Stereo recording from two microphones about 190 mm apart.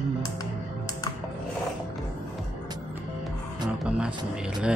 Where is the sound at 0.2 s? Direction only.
20° left (ahead or behind).